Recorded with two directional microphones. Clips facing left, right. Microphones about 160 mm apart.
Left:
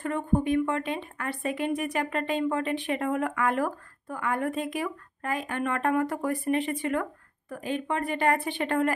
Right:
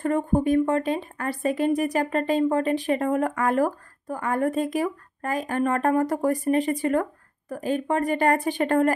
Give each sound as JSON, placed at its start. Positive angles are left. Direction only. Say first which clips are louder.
{"t": 0.0, "sound": "a woman's voice", "louder": "right 4 dB", "side_deg": -40}